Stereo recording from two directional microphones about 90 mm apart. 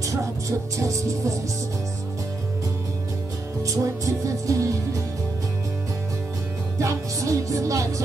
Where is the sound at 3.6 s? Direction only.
35° right (ahead or behind).